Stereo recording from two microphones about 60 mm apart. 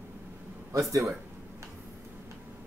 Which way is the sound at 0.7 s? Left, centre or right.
Right.